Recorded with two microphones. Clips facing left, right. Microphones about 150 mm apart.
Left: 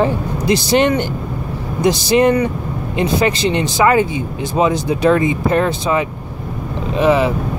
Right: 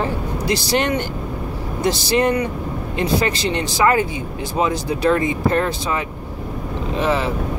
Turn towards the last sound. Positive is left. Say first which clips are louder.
# left 6 dB
turn(degrees=15)  # may be behind; listen again after turning